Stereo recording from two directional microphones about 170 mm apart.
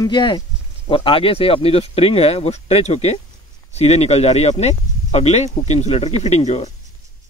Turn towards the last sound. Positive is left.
turn(degrees=40)  # may be behind; listen again after turning